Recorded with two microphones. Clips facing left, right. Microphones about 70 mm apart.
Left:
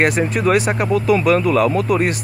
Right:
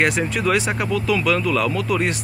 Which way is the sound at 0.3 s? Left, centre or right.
Left.